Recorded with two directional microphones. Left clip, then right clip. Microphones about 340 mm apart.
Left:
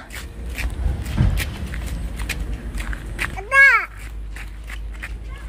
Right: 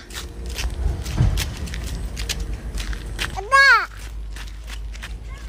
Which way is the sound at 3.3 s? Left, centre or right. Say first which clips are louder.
Left 1 dB; centre.